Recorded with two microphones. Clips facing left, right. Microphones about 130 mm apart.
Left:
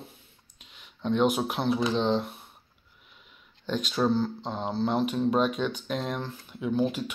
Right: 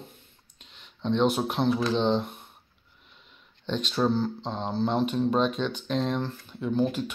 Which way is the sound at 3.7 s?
5° left (ahead or behind).